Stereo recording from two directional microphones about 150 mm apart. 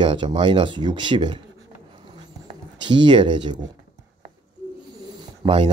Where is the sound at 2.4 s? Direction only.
30° right (ahead or behind).